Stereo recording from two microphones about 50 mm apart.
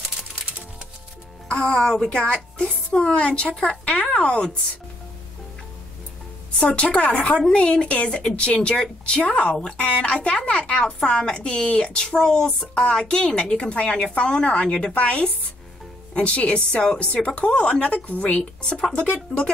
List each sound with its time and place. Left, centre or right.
1.5 s a woman's voice: centre
6.6 s speech: centre
18.6 s speech: centre